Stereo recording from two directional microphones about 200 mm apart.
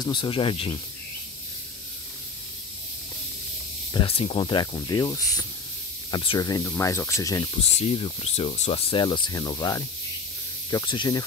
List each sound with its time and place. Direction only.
0.0 s speech: 25° left (ahead or behind)
3.9 s speech: 25° left (ahead or behind)
7.5 s speech: 25° left (ahead or behind)